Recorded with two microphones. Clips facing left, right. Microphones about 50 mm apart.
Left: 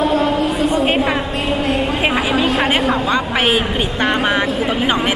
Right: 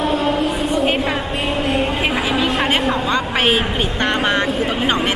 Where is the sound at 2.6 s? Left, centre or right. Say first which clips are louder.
Left 2 dB; centre.